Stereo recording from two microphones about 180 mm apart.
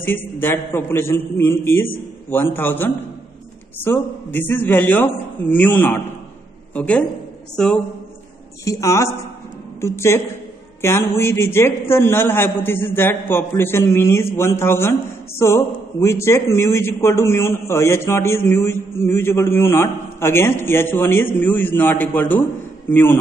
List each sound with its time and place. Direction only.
0.0 s a man's voice: 10° left (ahead or behind)
8.6 s a man's voice: 15° left (ahead or behind)